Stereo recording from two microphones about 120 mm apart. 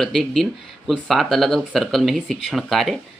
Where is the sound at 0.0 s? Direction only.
Centre (ahead or behind).